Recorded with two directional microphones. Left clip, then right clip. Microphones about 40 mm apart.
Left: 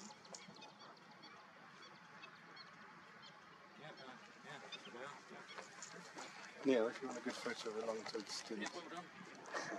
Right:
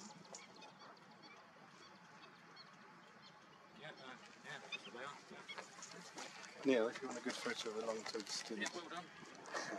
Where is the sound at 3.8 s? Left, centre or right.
Right.